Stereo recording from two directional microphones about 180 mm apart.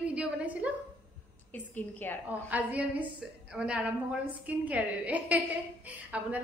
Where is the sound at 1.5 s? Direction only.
10° left (ahead or behind).